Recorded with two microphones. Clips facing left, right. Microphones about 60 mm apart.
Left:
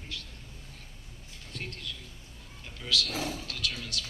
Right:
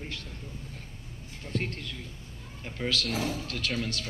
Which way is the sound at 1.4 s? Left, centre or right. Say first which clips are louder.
Right 7 dB; right.